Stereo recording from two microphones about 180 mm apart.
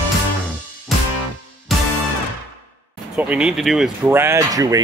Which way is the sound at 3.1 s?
5° right (ahead or behind).